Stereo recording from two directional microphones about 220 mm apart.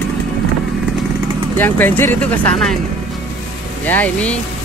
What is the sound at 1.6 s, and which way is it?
Speech, 10° left (ahead or behind).